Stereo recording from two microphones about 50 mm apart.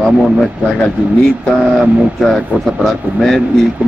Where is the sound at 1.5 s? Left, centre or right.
Centre.